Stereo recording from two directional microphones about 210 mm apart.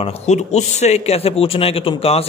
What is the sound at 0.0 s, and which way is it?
A man's voice, 30° left (ahead or behind).